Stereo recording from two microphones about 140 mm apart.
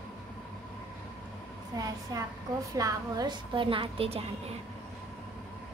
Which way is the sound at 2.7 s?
25° right (ahead or behind).